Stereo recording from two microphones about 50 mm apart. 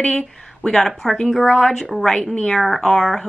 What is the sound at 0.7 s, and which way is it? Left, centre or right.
A woman's voice, centre.